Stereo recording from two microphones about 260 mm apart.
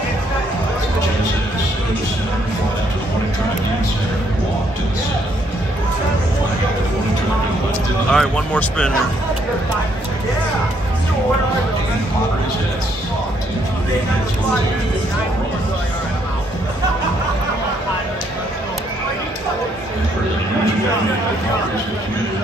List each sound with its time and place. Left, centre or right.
8.1 s speech: centre